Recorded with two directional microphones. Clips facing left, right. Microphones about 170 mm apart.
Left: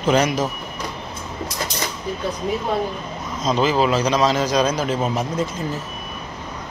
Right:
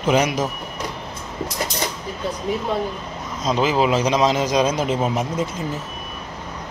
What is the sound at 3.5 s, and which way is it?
A man's voice, 15° right (ahead or behind).